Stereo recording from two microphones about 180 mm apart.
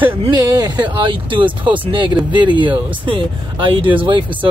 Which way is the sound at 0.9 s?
25° right (ahead or behind).